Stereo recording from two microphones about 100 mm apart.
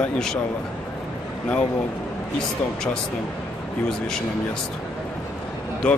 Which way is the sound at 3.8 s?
5° left (ahead or behind).